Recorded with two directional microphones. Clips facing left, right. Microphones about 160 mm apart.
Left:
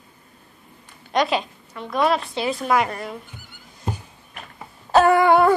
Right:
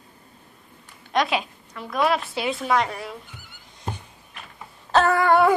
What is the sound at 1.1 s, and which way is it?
A woman's voice, centre (ahead or behind).